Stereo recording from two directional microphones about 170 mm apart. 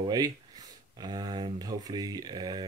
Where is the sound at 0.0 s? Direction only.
20° right (ahead or behind).